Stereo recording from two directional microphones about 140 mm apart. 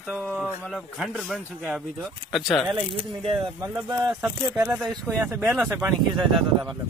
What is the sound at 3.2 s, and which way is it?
Speech, 40° right (ahead or behind).